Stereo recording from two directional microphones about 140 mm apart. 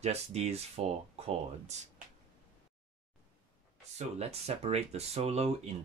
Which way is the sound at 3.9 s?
50° right (ahead or behind).